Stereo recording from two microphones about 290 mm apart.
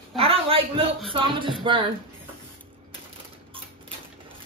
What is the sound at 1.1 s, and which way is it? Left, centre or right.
Music, centre.